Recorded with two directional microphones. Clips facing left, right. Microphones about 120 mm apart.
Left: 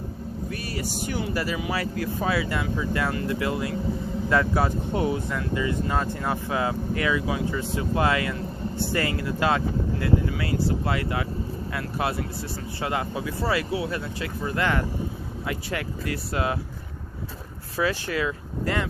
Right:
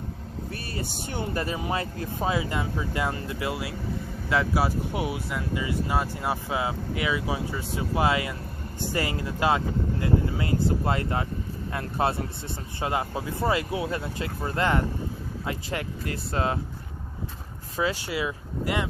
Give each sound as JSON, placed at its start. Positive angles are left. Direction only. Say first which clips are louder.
{"t": 0.5, "sound": "vehicle", "louder": "left 2 dB", "side_deg": -30}
{"t": 1.3, "sound": "speech", "louder": "right 2 dB", "side_deg": -25}
{"t": 17.7, "sound": "speech", "louder": "left 2 dB", "side_deg": -20}